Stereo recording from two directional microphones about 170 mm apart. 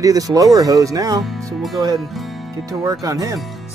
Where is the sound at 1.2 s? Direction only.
Centre (ahead or behind).